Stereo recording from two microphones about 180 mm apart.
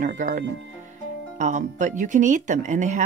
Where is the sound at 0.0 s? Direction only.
45° right (ahead or behind).